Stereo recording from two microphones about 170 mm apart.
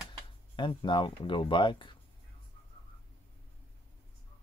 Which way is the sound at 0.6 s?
30° left (ahead or behind).